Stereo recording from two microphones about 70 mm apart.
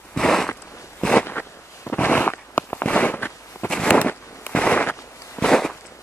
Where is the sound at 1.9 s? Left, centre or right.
Left.